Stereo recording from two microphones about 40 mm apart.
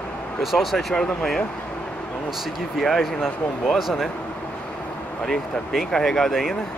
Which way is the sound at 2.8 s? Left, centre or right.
Centre.